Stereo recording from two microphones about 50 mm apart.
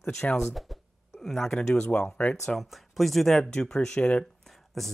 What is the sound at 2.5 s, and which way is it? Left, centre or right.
Speech, centre.